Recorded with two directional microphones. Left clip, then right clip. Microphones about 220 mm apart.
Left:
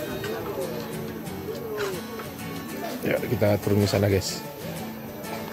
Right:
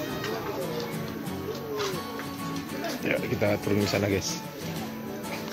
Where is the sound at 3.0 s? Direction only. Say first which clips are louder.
Left 3 dB; 15° left (ahead or behind).